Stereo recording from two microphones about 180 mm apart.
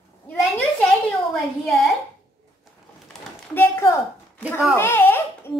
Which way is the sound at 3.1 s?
10° left (ahead or behind).